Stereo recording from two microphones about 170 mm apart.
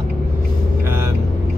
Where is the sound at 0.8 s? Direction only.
15° right (ahead or behind).